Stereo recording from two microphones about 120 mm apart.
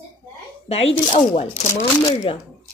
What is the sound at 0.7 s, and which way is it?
Speech, 55° left (ahead or behind).